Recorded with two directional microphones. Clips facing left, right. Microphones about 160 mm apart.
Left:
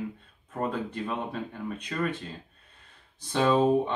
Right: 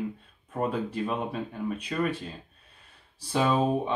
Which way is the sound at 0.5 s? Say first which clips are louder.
Right 2 dB; 10° right (ahead or behind).